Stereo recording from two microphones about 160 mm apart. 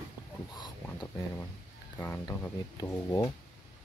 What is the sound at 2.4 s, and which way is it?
Speech, 20° left (ahead or behind).